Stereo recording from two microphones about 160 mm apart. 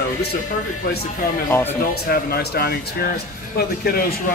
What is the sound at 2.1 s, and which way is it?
Speech, 75° left (ahead or behind).